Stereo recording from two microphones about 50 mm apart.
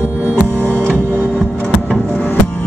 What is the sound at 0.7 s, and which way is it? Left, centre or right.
Music, right.